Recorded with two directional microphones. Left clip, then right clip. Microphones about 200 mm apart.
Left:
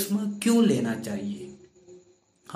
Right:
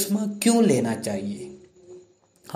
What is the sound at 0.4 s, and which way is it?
Speech, 15° right (ahead or behind).